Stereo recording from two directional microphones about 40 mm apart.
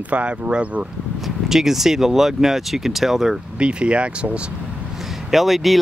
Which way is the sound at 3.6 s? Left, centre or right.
Right.